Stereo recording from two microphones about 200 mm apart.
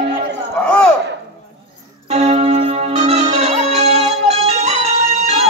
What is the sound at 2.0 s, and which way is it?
Music, 35° right (ahead or behind).